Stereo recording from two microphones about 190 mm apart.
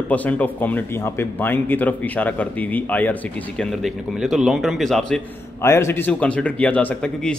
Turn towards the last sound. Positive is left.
turn(degrees=5)  # may be behind; listen again after turning